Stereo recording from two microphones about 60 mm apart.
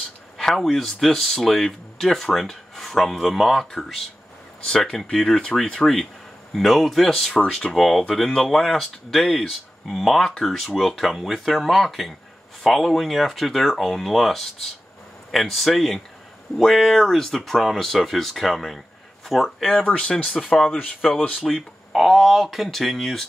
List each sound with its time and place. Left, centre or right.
0.4 s speech: centre
6.5 s speech: centre
19.9 s speech: left
21.4 s speech: centre